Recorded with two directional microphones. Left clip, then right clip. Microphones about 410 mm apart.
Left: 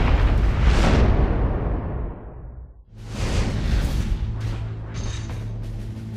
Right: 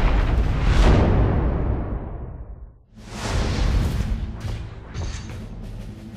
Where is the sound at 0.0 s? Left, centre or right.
Centre.